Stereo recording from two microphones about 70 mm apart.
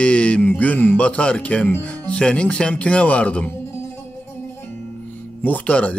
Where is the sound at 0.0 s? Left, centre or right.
Centre.